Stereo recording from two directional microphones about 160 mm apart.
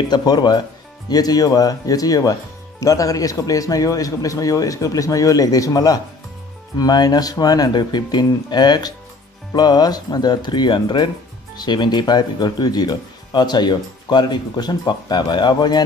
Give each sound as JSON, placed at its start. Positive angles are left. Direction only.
{"t": 0.1, "sound": "speech", "side_deg": 25}